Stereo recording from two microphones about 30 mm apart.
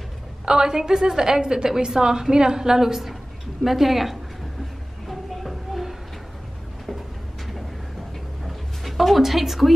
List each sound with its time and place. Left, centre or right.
0.5 s a woman's voice: right; by 4.2 s centre
5.0 s a sound: centre
8.5 s music: centre